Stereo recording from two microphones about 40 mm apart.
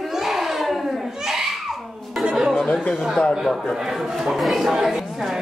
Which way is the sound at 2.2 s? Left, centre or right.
Centre.